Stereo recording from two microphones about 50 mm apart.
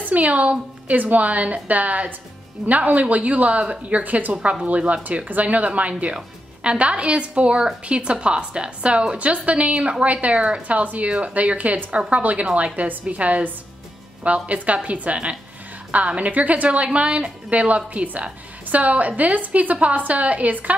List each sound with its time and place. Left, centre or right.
0.0 s a woman's voice: right
4.3 s a woman's voice: right